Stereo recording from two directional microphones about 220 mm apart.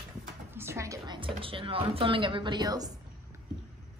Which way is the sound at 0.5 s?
10° right (ahead or behind).